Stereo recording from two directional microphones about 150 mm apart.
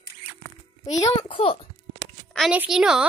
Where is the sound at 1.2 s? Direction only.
35° left (ahead or behind).